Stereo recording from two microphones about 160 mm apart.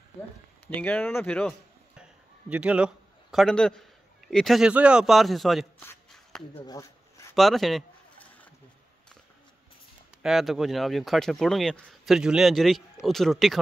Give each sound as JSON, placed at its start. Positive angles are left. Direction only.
{"t": 0.7, "sound": "speech", "side_deg": 10}
{"t": 2.5, "sound": "a man's voice", "side_deg": -5}
{"t": 6.6, "sound": "a sound", "side_deg": 25}
{"t": 7.3, "sound": "bird", "side_deg": 0}
{"t": 10.2, "sound": "speech", "side_deg": 0}